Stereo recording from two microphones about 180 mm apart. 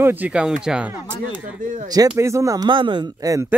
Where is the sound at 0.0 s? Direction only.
10° right (ahead or behind).